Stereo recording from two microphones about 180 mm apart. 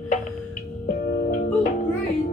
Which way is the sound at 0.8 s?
55° left (ahead or behind).